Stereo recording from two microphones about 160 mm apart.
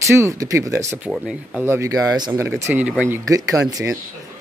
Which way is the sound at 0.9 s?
5° right (ahead or behind).